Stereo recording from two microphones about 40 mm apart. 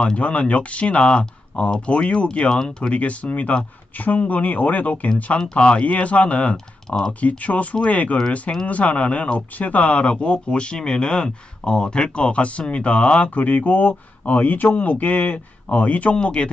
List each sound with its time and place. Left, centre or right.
0.2 s speech: left
2.9 s speech: left